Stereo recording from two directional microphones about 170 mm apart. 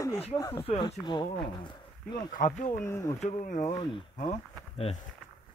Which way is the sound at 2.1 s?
50° left (ahead or behind).